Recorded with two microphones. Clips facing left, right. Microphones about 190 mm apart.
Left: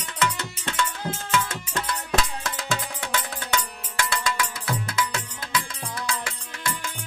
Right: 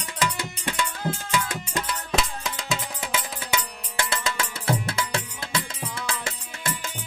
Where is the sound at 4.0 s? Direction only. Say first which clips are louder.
Left 1 dB; 25° right (ahead or behind).